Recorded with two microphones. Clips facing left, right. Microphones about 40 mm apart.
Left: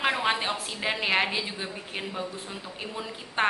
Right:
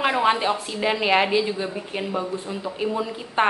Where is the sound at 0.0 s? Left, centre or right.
Centre.